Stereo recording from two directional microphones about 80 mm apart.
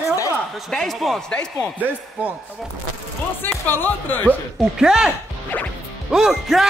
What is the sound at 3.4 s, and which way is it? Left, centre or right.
Speech, left.